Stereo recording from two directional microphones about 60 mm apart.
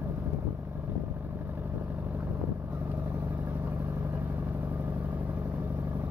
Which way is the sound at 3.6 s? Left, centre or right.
Right.